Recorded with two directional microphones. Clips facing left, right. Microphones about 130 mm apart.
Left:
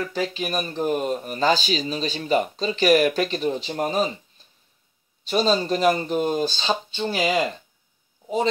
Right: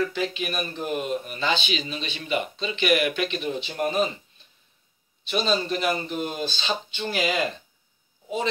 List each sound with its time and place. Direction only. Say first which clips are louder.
0.1 s speech: left 3 dB; 40° left (ahead or behind)
5.2 s speech: left 4 dB; 40° left (ahead or behind)